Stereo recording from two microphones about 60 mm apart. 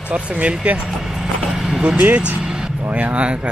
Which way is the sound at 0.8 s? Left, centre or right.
Centre.